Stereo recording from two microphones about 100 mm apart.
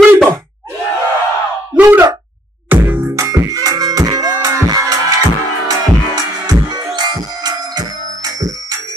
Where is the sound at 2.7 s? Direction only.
20° right (ahead or behind).